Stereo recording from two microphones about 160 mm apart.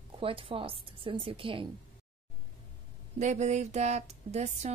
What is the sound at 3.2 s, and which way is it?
A woman's voice, 45° right (ahead or behind).